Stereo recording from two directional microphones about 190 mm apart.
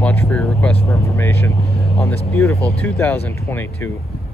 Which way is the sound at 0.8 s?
15° left (ahead or behind).